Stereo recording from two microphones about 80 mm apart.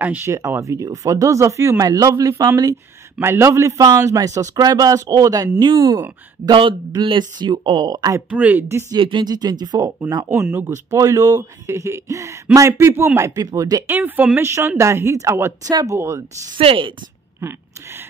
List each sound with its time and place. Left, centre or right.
0.0 s speech: right
0.3 s speech: right
3.2 s speech: right
6.4 s speech: right
7.0 s speech: right
7.9 s speech: right
8.3 s speech: centre
8.9 s speech: right
9.3 s speech: right
13.8 s speech: right
14.4 s speech: right
15.6 s speech: right
16.5 s speech: right
17.4 s speech: right